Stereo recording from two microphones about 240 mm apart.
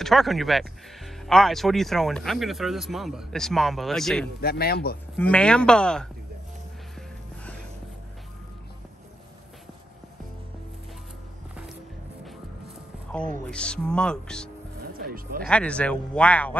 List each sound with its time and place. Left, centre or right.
0.0 s speech: centre
4.4 s speech: left
5.1 s speech: centre
13.5 s speech: centre
15.0 s a sound: right
15.4 s speech: centre